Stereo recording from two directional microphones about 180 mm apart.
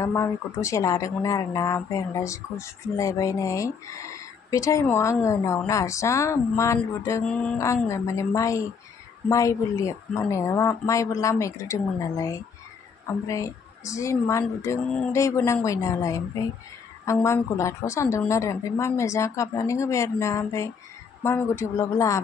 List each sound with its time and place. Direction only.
0.0 s a woman's voice: 15° left (ahead or behind)
7.2 s a sound: 5° left (ahead or behind)
7.6 s a woman's voice: 15° left (ahead or behind)